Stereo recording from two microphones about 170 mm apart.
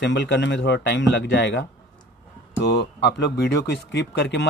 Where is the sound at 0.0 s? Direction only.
90° left.